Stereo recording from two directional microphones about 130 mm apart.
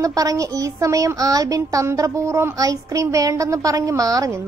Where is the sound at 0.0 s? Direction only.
25° right (ahead or behind).